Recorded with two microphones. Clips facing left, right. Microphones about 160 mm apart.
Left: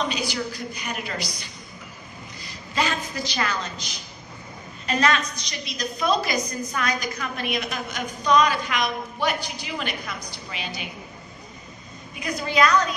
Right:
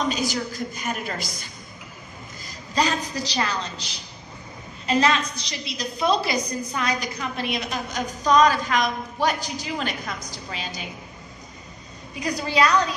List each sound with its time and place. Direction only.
0.1 s a woman's voice: 45° right (ahead or behind)
12.2 s a woman's voice: 35° right (ahead or behind)